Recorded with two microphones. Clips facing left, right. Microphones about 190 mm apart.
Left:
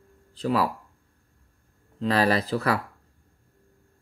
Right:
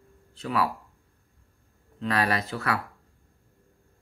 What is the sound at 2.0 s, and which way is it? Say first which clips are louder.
Speech: left 4 dB; 30° left (ahead or behind).